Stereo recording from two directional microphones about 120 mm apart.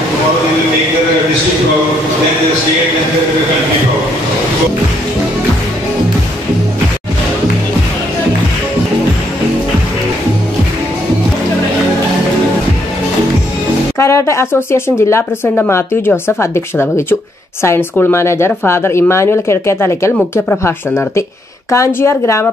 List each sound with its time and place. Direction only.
13.9 s speech: 25° left (ahead or behind)